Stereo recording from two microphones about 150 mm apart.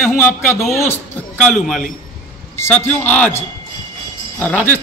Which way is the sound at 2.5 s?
15° left (ahead or behind).